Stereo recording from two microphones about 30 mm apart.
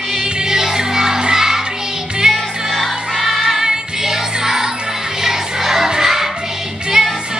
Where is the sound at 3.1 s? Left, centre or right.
Centre.